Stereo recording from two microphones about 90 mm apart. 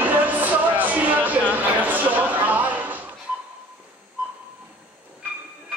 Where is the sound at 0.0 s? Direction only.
20° right (ahead or behind).